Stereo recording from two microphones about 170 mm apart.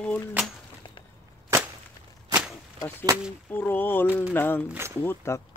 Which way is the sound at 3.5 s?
10° left (ahead or behind).